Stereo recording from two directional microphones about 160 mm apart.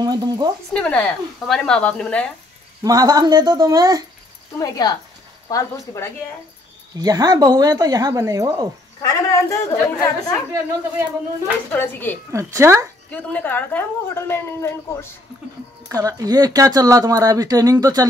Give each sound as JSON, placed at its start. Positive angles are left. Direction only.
{"t": 0.0, "sound": "speech", "side_deg": -25}
{"t": 0.7, "sound": "a woman's voice", "side_deg": 5}
{"t": 2.8, "sound": "speech", "side_deg": -25}
{"t": 4.6, "sound": "a woman's voice", "side_deg": 20}
{"t": 7.0, "sound": "speech", "side_deg": -25}
{"t": 9.0, "sound": "a woman's voice", "side_deg": 20}
{"t": 10.5, "sound": "speech", "side_deg": -15}
{"t": 11.7, "sound": "a woman's voice", "side_deg": 15}
{"t": 12.3, "sound": "speech", "side_deg": -20}
{"t": 13.1, "sound": "a woman's voice", "side_deg": 10}
{"t": 15.9, "sound": "speech", "side_deg": -20}